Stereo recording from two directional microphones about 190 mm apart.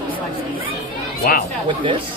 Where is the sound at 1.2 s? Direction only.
50° left (ahead or behind).